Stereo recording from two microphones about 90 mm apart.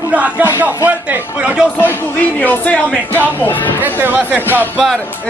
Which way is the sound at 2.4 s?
20° left (ahead or behind).